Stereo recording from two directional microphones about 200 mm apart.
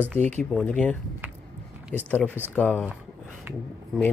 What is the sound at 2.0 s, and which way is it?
Speech, 10° left (ahead or behind).